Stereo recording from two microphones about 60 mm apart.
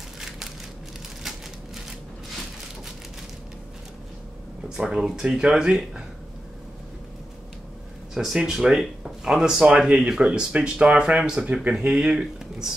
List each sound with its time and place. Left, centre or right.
4.6 s speech: centre
8.1 s speech: centre; by 11.7 s right
12.0 s speech: centre